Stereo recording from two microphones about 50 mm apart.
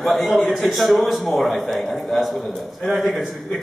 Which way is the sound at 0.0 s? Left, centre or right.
Centre.